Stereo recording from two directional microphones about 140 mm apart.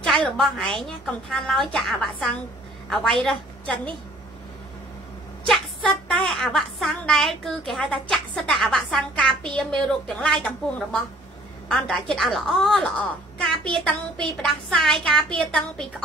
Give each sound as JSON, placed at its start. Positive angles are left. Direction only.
{"t": 0.0, "sound": "a woman's voice", "side_deg": 5}
{"t": 5.5, "sound": "a woman's voice", "side_deg": 5}